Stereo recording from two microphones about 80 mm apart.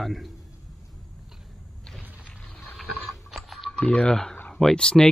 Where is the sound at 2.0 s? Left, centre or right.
Centre.